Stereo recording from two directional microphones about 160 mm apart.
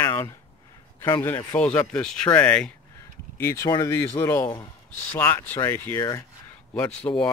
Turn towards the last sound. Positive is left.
turn(degrees=10)  # may be behind; listen again after turning